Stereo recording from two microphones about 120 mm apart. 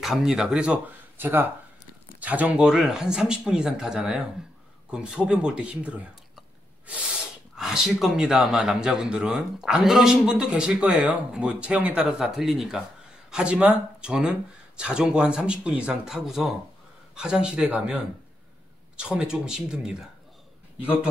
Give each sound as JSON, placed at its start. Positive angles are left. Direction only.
{"t": 0.0, "sound": "speech", "side_deg": -5}
{"t": 7.5, "sound": "speech", "side_deg": -5}